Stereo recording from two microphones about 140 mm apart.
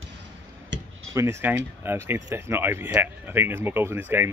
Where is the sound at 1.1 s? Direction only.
20° right (ahead or behind).